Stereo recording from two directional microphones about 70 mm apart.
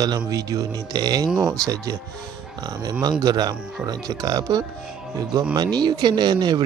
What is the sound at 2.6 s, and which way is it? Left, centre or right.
Speech, right.